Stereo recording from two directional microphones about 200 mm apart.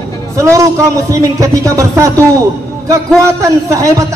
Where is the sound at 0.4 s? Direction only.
15° right (ahead or behind).